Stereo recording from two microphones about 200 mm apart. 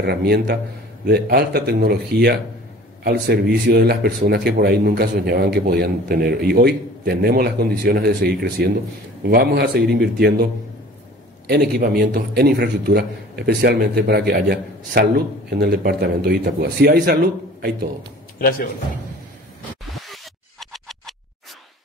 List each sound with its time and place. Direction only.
0.0 s a man's voice: 55° right (ahead or behind)